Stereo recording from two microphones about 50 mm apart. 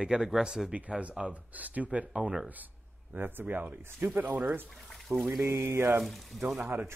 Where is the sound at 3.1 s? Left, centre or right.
Right.